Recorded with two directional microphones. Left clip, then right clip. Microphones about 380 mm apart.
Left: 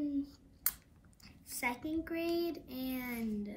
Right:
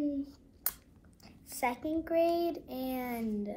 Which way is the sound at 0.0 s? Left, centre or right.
Centre.